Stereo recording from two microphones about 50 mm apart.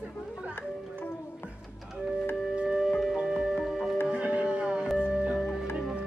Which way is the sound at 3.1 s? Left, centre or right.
Centre.